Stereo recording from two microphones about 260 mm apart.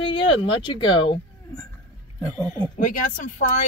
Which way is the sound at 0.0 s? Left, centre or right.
Centre.